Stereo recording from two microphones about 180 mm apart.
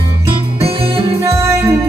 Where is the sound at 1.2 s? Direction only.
15° right (ahead or behind).